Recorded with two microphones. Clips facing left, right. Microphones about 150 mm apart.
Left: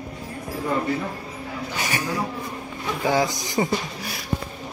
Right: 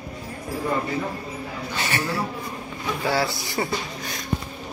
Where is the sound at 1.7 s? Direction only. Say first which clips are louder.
Right 1 dB; 15° left (ahead or behind).